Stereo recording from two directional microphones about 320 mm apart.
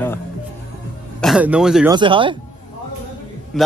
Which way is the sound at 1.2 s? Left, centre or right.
Centre.